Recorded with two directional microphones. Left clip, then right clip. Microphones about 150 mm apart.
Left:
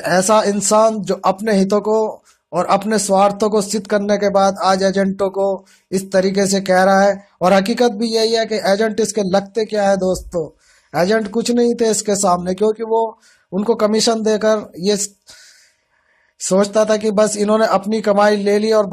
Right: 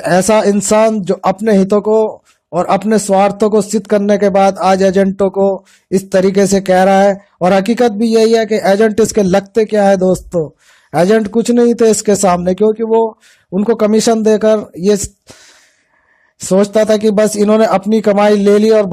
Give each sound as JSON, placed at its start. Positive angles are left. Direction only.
{"t": 0.0, "sound": "speech", "side_deg": -45}
{"t": 16.3, "sound": "speech", "side_deg": -40}